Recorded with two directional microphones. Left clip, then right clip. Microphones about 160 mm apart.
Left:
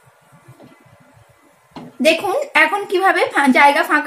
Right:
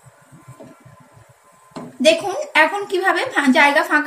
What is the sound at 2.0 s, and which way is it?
A woman's voice, 65° left (ahead or behind).